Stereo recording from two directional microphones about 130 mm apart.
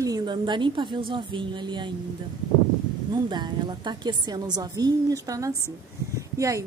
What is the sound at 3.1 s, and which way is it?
A woman's voice, 35° right (ahead or behind).